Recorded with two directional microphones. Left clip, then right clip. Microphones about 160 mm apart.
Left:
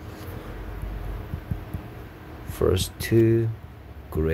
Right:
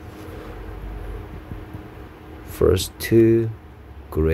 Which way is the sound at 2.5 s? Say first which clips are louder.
Right 5 dB; 30° right (ahead or behind).